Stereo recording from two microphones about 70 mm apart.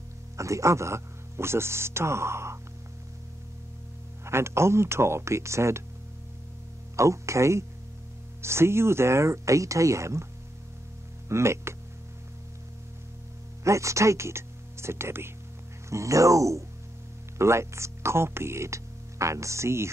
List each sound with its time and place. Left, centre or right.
0.4 s speech: right
4.2 s speech: right
7.0 s speech: right
11.2 s speech: right
13.7 s speech: right
15.9 s speech: right